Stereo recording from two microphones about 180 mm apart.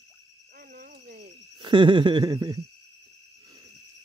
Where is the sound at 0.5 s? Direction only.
55° right (ahead or behind).